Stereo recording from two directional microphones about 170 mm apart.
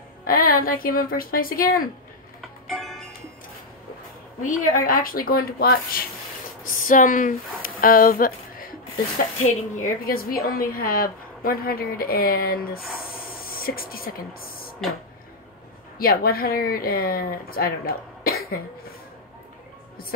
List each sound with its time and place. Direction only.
0.3 s a woman's voice: 55° left (ahead or behind)
2.7 s music: centre (ahead or behind)
4.4 s a woman's voice: 50° left (ahead or behind)
6.6 s a sound: 50° left (ahead or behind)
9.8 s a woman's voice: 55° left (ahead or behind)
16.0 s a woman's voice: 60° left (ahead or behind)